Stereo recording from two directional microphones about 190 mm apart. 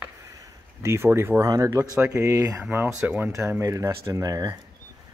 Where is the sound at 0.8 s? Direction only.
15° right (ahead or behind).